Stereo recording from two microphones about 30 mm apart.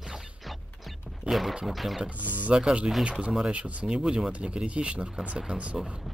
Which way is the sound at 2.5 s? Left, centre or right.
Right.